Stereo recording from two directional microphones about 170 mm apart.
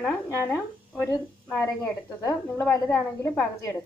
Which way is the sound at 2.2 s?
20° left (ahead or behind).